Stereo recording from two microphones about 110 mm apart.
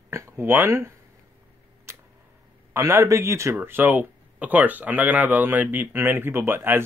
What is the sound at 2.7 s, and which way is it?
Speech, 25° right (ahead or behind).